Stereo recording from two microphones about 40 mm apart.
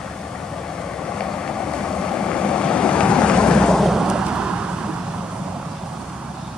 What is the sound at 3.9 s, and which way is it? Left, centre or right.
Vehicle, centre.